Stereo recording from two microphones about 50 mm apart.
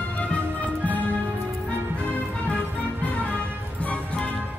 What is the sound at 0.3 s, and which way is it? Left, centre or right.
Music, left.